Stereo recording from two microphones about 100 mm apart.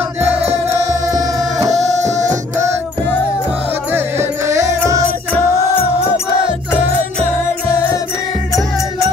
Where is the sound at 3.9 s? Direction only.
25° right (ahead or behind).